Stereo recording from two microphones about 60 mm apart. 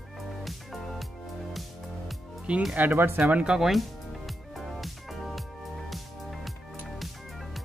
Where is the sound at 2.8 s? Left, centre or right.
Right.